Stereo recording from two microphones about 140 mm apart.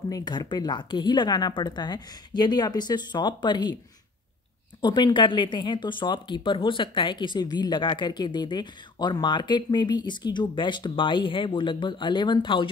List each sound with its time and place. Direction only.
0.1 s speech: 30° left (ahead or behind)
4.8 s speech: 35° left (ahead or behind)